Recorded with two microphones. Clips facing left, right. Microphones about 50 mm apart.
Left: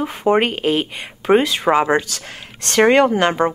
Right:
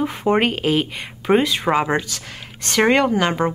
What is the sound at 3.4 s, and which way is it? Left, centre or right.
Speech, left.